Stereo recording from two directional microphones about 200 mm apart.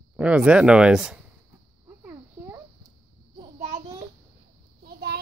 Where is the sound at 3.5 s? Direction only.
35° right (ahead or behind).